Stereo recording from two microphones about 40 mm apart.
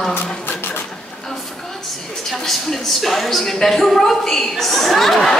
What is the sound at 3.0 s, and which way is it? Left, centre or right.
Speech, centre.